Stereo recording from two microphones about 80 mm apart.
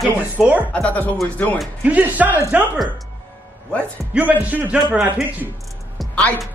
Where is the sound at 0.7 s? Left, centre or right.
Centre.